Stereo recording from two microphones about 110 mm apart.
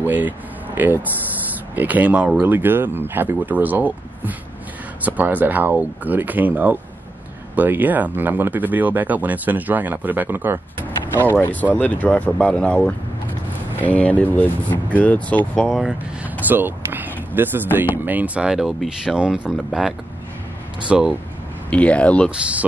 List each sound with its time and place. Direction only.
0.0 s speech: 15° right (ahead or behind)
11.4 s speech: 15° left (ahead or behind)
15.6 s speech: 5° right (ahead or behind)
16.3 s speech: 15° right (ahead or behind)
20.9 s speech: 5° right (ahead or behind)
21.6 s speech: 10° left (ahead or behind)